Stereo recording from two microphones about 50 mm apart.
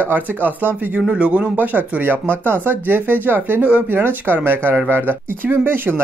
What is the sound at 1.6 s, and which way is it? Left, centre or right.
Speech, right.